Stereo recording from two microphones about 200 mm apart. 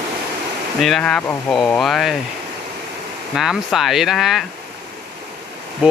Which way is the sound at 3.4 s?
Centre (ahead or behind).